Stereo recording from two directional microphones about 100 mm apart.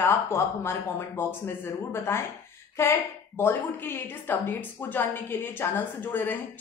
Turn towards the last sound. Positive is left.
turn(degrees=20)  # may be behind; listen again after turning